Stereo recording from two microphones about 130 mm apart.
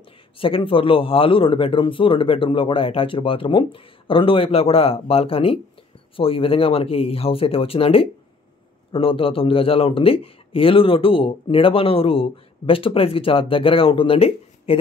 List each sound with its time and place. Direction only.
0.4 s speech: 45° left (ahead or behind)